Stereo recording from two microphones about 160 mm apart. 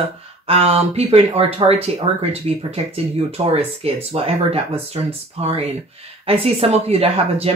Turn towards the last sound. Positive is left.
turn(degrees=-40)  # may be behind; listen again after turning